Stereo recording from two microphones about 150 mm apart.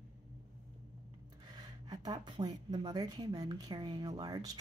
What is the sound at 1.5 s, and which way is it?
A woman's voice, 25° right (ahead or behind).